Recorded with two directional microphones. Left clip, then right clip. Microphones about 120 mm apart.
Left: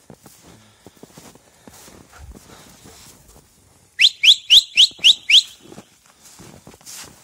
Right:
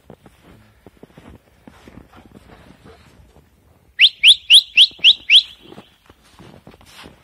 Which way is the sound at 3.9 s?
50° left (ahead or behind).